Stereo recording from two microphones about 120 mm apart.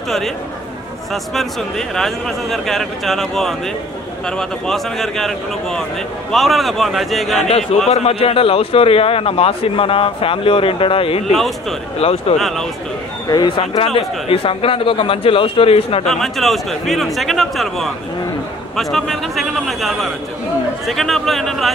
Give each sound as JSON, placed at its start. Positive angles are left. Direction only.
{"t": 1.1, "sound": "a man's voice", "side_deg": 0}
{"t": 7.3, "sound": "a man's voice", "side_deg": 60}
{"t": 12.4, "sound": "a man's voice", "side_deg": 0}
{"t": 13.6, "sound": "a man's voice", "side_deg": 50}
{"t": 16.1, "sound": "a man's voice", "side_deg": 0}